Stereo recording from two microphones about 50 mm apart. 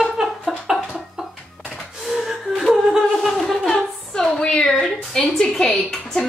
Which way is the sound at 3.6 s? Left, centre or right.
Centre.